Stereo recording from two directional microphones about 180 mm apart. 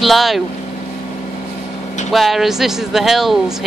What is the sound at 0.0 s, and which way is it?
Speech, centre (ahead or behind).